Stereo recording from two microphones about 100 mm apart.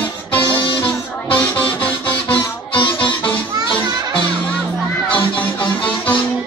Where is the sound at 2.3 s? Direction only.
55° left (ahead or behind).